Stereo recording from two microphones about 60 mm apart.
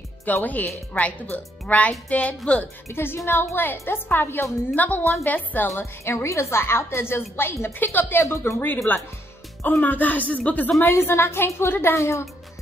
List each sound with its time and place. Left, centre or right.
0.2 s speech: left
2.9 s a woman's voice: left
6.0 s a woman's voice: left
8.2 s a woman's voice: left
8.9 s speech: left
10.8 s a woman's voice: left